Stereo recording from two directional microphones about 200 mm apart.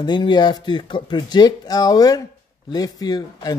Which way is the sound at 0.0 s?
20° left (ahead or behind).